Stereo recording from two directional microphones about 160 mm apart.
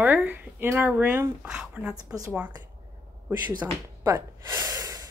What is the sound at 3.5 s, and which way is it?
Speech, 20° right (ahead or behind).